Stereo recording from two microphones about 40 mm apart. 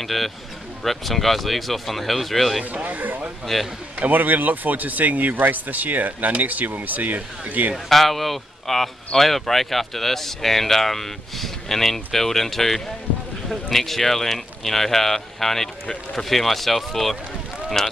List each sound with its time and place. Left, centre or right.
0.0 s speech: centre
2.6 s speech: right
3.5 s speech: centre
4.0 s speech: right
7.9 s speech: centre